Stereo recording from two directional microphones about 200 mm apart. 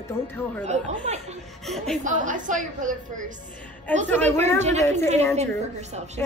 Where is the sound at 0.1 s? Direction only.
10° left (ahead or behind).